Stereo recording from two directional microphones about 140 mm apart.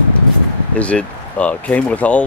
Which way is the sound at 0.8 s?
10° left (ahead or behind).